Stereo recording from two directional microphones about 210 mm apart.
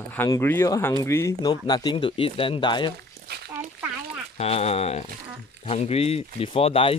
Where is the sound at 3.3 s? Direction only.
50° right (ahead or behind).